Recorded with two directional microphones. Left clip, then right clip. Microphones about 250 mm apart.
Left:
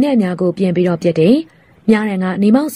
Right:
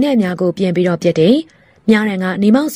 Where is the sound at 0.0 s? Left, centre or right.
Right.